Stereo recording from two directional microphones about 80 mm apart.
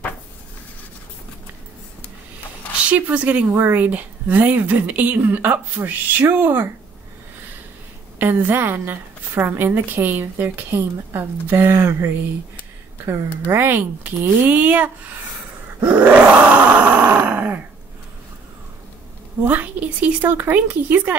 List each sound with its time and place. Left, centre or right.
2.8 s a woman's voice: centre
8.2 s a woman's voice: right
15.8 s grunt: centre
19.4 s a woman's voice: right